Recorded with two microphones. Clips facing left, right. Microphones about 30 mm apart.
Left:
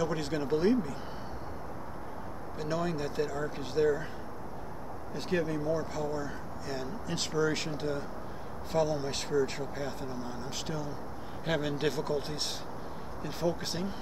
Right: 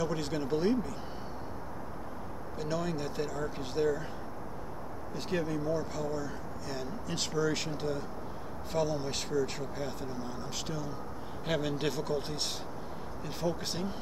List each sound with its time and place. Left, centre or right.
0.0 s speech: centre
2.6 s speech: centre
5.1 s speech: centre
9.3 s speech: centre
9.8 s speech: centre